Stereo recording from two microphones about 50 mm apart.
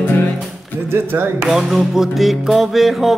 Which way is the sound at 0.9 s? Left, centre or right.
Right.